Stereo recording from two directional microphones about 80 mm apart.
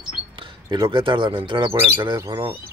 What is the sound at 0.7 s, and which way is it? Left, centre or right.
Speech, right.